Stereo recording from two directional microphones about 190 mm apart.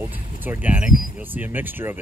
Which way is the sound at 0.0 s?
10° right (ahead or behind).